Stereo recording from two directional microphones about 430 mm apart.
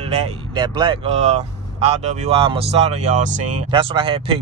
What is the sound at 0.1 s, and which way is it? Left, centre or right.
Speech, centre.